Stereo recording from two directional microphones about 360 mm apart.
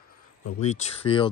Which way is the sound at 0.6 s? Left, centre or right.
Centre.